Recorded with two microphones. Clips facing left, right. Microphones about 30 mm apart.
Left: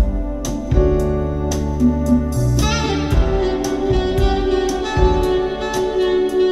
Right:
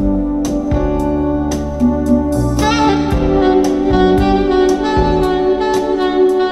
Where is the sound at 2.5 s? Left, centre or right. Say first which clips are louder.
Right 7 dB; right.